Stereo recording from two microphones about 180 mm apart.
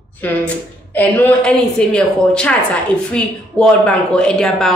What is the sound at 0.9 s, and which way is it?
A woman's voice, 10° left (ahead or behind).